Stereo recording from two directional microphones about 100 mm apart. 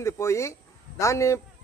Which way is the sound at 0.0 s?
30° left (ahead or behind).